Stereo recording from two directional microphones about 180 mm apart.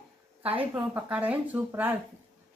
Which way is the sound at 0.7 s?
10° right (ahead or behind).